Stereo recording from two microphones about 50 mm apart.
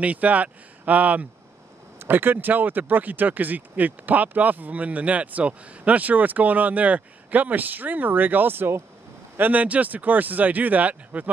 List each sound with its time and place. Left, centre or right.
0.0 s speech: right
2.0 s speech: right
9.4 s speech: right